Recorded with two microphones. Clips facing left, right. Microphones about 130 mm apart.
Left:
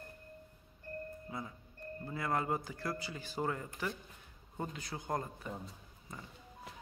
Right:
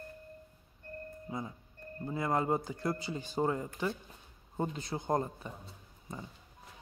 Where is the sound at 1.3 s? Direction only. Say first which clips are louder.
Right 4 dB; 25° right (ahead or behind).